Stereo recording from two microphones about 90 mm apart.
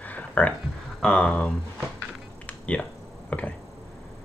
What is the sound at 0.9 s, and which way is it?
Speech, 10° left (ahead or behind).